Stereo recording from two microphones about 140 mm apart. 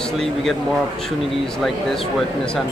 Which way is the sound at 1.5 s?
Centre (ahead or behind).